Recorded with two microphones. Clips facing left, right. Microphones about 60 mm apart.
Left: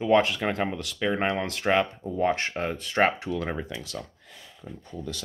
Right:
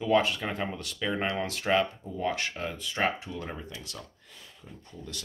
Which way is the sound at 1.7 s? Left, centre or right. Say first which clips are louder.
Left 1 dB; left.